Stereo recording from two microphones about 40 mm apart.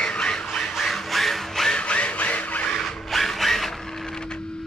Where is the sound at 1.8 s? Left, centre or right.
Left.